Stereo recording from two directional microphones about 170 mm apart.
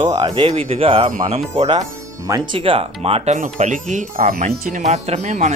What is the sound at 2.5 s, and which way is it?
Speech, 30° right (ahead or behind).